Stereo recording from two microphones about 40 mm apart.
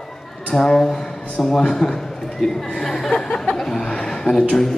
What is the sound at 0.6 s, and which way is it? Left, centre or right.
A man's voice, centre.